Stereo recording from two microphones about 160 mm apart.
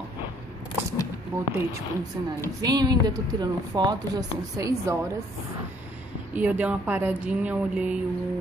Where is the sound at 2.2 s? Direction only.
20° right (ahead or behind).